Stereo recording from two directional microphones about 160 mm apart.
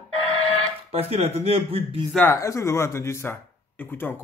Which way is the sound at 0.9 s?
40° right (ahead or behind).